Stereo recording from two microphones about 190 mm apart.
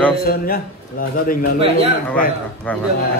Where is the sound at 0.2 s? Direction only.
50° left (ahead or behind).